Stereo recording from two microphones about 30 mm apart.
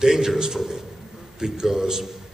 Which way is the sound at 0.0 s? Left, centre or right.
Centre.